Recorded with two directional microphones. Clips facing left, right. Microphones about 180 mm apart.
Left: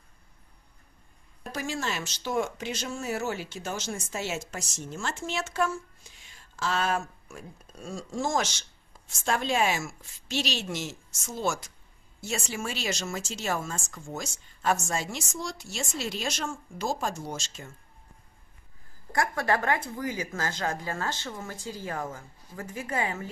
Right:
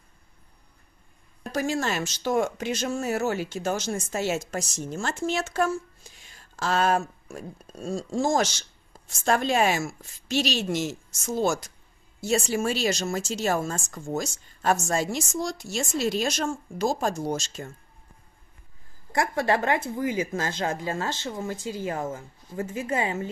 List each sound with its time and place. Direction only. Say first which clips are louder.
1.5 s speech: right 6 dB; 45° right (ahead or behind)
19.1 s speech: right 3 dB; 20° right (ahead or behind)